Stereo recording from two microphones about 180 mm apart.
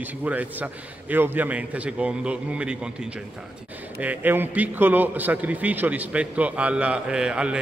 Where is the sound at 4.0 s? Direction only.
10° right (ahead or behind).